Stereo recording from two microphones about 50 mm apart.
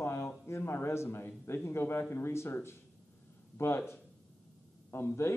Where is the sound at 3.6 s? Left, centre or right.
Left.